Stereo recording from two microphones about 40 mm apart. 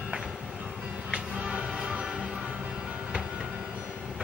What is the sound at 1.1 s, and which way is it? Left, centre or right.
Music, right.